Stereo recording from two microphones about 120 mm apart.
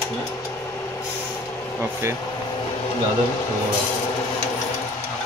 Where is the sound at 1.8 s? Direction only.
20° right (ahead or behind).